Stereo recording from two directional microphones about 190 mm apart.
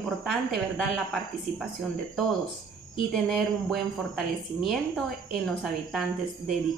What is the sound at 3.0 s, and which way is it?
A woman's voice, centre (ahead or behind).